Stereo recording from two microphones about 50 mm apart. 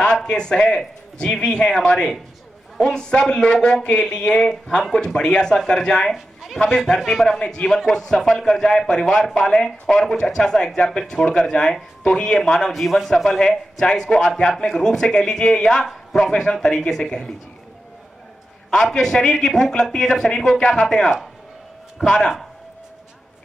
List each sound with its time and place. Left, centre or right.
0.0 s a man's voice: centre
15.8 s a man's voice: centre
16.3 s a man's voice: centre
18.7 s a man's voice: centre